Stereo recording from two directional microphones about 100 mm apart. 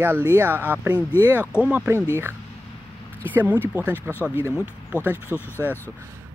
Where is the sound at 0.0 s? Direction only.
20° right (ahead or behind).